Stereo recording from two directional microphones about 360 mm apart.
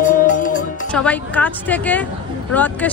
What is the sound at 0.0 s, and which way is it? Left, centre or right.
Music, left.